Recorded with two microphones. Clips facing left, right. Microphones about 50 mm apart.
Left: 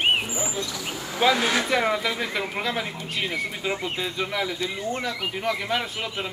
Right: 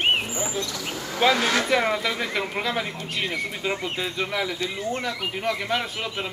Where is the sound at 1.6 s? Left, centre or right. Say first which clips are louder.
Right 1 dB; centre.